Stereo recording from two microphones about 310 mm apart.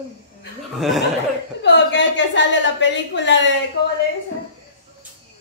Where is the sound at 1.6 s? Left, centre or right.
Left.